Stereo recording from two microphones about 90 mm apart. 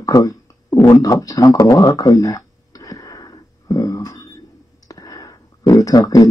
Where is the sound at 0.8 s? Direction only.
45° left (ahead or behind).